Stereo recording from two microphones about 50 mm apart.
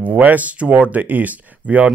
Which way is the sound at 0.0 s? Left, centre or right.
Right.